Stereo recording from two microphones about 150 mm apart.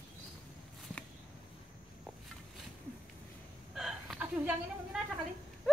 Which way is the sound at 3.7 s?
5° right (ahead or behind).